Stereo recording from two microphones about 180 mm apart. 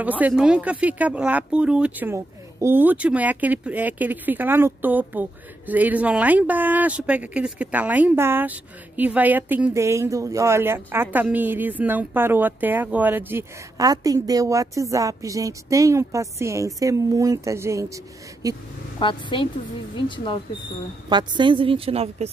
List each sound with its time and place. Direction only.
0.0 s a woman's voice: 10° right (ahead or behind)
18.9 s a woman's voice: 25° left (ahead or behind)
21.1 s a woman's voice: 25° right (ahead or behind)